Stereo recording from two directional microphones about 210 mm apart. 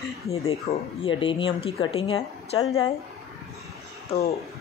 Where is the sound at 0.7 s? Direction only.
25° left (ahead or behind).